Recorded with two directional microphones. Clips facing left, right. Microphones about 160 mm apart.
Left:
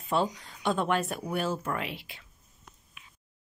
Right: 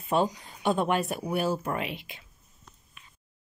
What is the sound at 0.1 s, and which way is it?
Speech, 15° right (ahead or behind).